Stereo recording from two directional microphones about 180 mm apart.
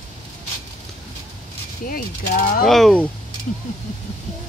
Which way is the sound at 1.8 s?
50° left (ahead or behind).